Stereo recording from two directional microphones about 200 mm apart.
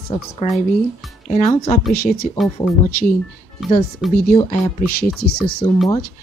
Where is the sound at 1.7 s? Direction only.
45° left (ahead or behind).